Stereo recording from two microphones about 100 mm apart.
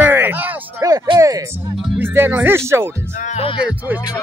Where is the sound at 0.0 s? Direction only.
20° right (ahead or behind).